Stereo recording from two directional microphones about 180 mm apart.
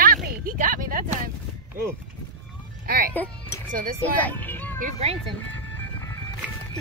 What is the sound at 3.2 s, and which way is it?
A child's voice, 15° left (ahead or behind).